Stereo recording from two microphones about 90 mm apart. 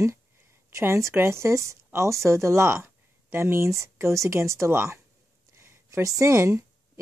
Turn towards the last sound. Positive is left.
turn(degrees=-30)  # may be behind; listen again after turning